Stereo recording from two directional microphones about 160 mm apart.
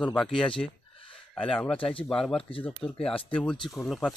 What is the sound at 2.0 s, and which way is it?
Speech, 5° left (ahead or behind).